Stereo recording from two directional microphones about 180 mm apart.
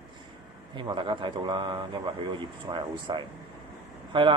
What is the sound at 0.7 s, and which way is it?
Speech, 25° right (ahead or behind).